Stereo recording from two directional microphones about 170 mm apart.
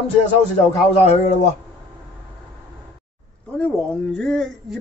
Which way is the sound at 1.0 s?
40° left (ahead or behind).